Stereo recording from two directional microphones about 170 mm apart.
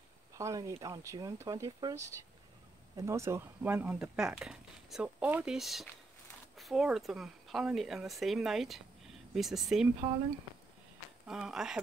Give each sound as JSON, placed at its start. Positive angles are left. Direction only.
{"t": 0.4, "sound": "speech", "side_deg": -20}
{"t": 11.2, "sound": "speech", "side_deg": -5}